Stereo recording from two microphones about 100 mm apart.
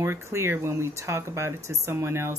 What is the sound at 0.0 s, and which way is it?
Speech, 25° right (ahead or behind).